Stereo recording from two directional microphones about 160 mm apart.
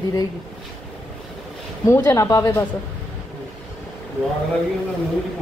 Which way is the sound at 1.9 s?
20° left (ahead or behind).